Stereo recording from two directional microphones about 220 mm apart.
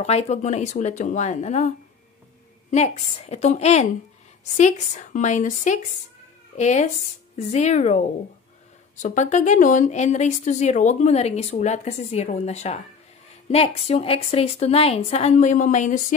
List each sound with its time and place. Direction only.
0.0 s a woman's voice: 30° left (ahead or behind)
2.7 s a woman's voice: 30° left (ahead or behind)